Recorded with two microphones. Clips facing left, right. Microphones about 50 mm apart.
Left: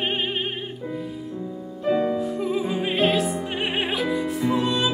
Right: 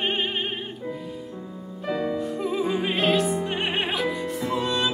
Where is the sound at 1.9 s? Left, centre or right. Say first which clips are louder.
Left 4 dB; centre.